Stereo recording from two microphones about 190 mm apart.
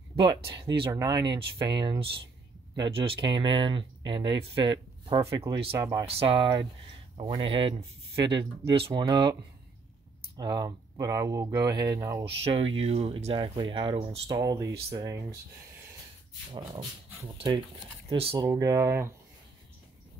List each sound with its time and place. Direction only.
0.1 s speech: 25° right (ahead or behind)
5.3 s speech: 15° right (ahead or behind)
6.0 s speech: 30° right (ahead or behind)
12.5 s speech: 30° right (ahead or behind)
18.1 s speech: 30° right (ahead or behind)
18.5 s speech: 15° right (ahead or behind)